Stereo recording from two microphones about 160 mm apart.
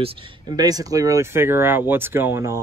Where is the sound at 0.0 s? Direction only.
30° right (ahead or behind).